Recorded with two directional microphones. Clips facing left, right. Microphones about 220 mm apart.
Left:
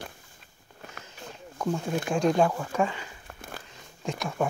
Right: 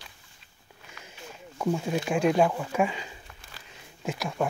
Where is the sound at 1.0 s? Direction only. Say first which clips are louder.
Even; 10° right (ahead or behind).